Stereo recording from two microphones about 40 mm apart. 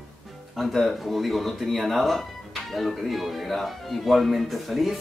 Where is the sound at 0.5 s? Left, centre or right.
Centre.